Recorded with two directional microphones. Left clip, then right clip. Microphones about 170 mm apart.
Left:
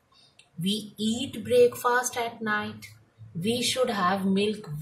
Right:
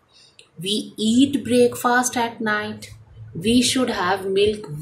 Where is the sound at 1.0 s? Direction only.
40° right (ahead or behind).